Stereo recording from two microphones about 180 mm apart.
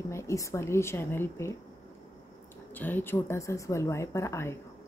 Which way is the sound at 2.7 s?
10° left (ahead or behind).